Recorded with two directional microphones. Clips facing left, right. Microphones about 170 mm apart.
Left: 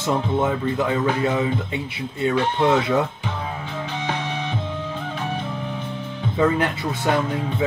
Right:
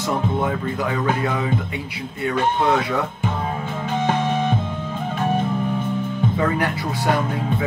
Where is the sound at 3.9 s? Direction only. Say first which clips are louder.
Right 8 dB; 50° right (ahead or behind).